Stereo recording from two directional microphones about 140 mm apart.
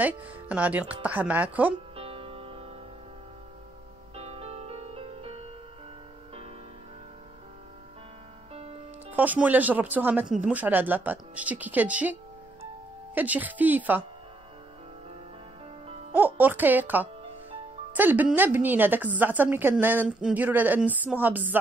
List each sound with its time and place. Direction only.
0.0 s a woman's voice: 10° right (ahead or behind)
2.0 s music: 40° right (ahead or behind)
4.1 s music: 45° right (ahead or behind)
9.1 s a woman's voice: 10° right (ahead or behind)
16.1 s a woman's voice: 10° right (ahead or behind)